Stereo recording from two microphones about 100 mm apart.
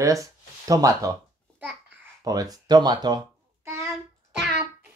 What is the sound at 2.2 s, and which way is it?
Speech, 40° right (ahead or behind).